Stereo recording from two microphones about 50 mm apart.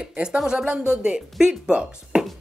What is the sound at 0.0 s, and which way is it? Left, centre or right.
Speech, centre.